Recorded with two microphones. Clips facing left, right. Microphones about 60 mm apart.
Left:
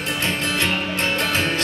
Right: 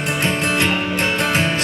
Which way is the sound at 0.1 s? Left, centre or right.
Right.